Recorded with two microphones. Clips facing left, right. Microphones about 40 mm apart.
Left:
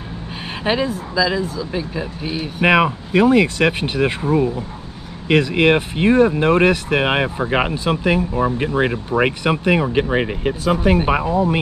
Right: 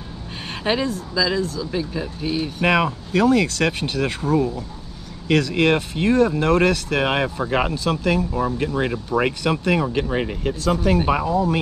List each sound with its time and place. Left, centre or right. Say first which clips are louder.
0.7 s speech: left 2 dB; centre